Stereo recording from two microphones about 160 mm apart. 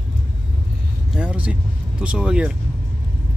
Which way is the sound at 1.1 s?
5° right (ahead or behind).